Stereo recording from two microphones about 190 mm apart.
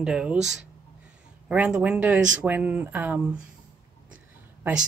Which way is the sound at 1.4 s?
5° right (ahead or behind).